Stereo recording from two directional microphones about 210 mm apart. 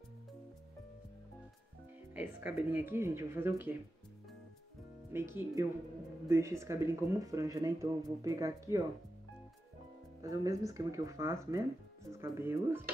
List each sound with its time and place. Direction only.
2.1 s speech: 10° right (ahead or behind)
5.1 s speech: 10° right (ahead or behind)
10.2 s speech: 15° right (ahead or behind)